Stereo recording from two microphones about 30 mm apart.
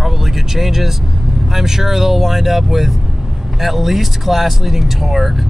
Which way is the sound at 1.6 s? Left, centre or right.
Centre.